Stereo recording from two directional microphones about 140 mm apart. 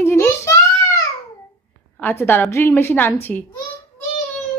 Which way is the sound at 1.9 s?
15° left (ahead or behind).